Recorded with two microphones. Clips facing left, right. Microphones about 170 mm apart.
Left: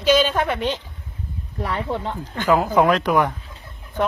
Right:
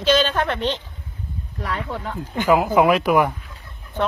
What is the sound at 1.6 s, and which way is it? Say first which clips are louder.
Speech: left 3 dB; 25° left (ahead or behind).